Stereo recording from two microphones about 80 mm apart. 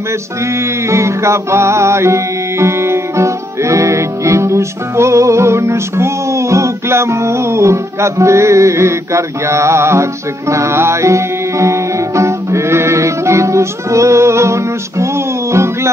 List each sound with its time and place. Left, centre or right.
0.5 s music: right
8.2 s mantra: right
10.5 s music: right